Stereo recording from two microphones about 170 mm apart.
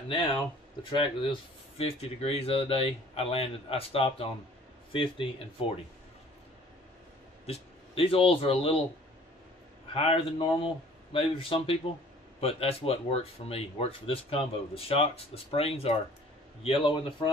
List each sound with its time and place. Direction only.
0.9 s speech: 30° left (ahead or behind)
7.4 s a man's voice: 35° left (ahead or behind)
9.9 s a man's voice: 35° left (ahead or behind)